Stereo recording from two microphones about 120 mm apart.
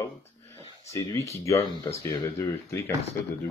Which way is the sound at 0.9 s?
25° left (ahead or behind).